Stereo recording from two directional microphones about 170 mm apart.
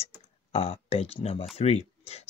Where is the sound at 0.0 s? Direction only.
35° left (ahead or behind).